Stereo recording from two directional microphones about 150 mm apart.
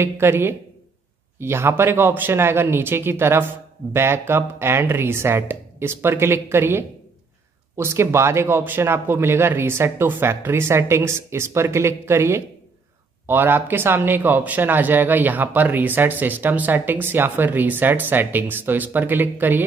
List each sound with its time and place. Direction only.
0.0 s speech: 15° right (ahead or behind)